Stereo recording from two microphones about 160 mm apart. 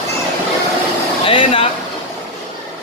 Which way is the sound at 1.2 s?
35° left (ahead or behind).